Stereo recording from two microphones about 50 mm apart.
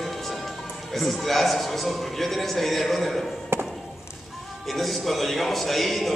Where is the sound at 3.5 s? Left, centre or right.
Right.